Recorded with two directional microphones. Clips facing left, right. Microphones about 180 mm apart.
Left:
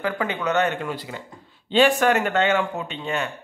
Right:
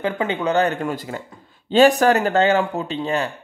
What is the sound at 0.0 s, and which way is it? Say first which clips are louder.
Speech: right 3 dB; 25° right (ahead or behind).